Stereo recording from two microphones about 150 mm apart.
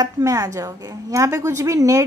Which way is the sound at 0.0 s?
20° right (ahead or behind).